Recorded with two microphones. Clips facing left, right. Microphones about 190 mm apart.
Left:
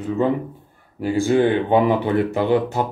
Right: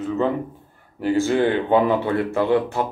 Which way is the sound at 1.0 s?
15° left (ahead or behind).